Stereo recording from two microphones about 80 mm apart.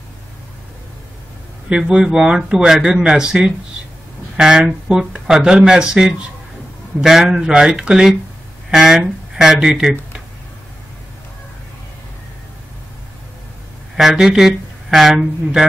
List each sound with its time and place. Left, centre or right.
1.7 s speech: centre
13.9 s speech: centre